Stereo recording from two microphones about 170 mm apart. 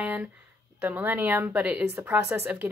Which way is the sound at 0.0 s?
10° right (ahead or behind).